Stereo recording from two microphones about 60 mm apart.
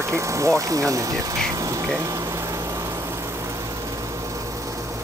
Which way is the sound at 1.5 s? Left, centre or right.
Right.